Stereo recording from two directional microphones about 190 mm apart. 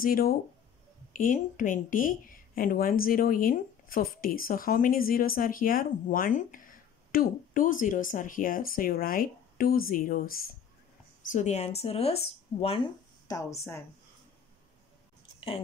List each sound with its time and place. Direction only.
0.0 s speech: 50° left (ahead or behind)
11.3 s speech: 35° left (ahead or behind)
13.3 s speech: 15° left (ahead or behind)